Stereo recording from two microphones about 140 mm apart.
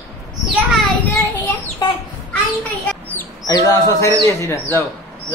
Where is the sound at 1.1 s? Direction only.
15° left (ahead or behind).